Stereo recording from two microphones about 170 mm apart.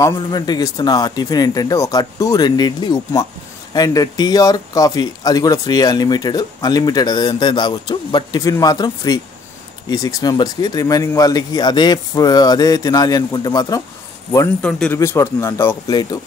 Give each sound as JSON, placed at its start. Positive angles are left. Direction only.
{"t": 0.0, "sound": "speech", "side_deg": 20}
{"t": 14.6, "sound": "speech", "side_deg": 5}
{"t": 15.0, "sound": "speech", "side_deg": 15}